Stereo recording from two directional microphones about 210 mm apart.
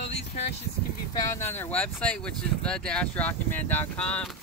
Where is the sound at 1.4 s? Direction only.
10° left (ahead or behind).